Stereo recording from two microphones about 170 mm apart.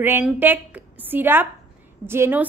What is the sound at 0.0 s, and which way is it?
A woman's voice, 10° right (ahead or behind).